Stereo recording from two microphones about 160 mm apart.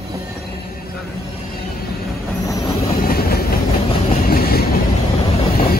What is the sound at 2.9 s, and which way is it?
Train, 70° left (ahead or behind).